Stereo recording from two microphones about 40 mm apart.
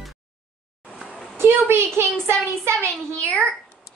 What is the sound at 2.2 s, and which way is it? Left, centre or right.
Child singing, right.